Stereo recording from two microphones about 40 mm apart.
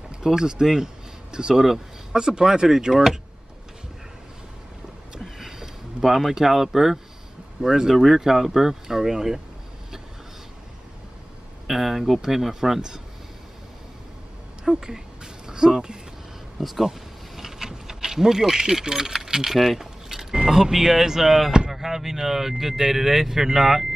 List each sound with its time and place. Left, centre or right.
0.2 s speech: centre
2.9 s speech: centre
5.2 s a sound: centre
7.6 s speech: centre
11.6 s speech: centre
14.6 s a woman's voice: centre
15.4 s a sound: centre
16.5 s speech: centre